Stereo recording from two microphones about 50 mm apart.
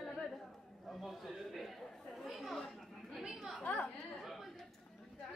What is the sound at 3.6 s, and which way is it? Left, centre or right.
Speech, left.